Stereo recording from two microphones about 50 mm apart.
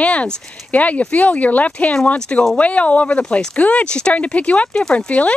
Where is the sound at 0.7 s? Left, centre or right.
Left.